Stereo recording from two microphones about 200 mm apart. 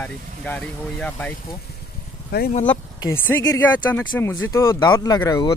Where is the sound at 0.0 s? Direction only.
5° left (ahead or behind).